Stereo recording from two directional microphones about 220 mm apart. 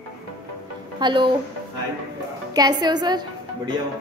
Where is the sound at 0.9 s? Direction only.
20° right (ahead or behind).